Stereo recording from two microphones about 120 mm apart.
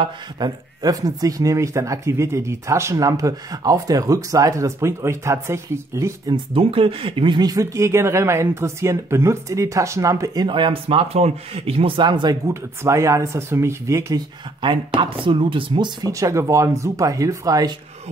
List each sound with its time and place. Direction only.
0.0 s speech: 35° right (ahead or behind)
6.3 s speech: 50° right (ahead or behind)
12.4 s speech: 25° right (ahead or behind)
14.6 s speech: 45° right (ahead or behind)
16.1 s speech: 25° right (ahead or behind)